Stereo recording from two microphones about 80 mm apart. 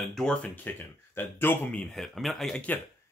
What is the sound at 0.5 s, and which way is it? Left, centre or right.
Speech, left.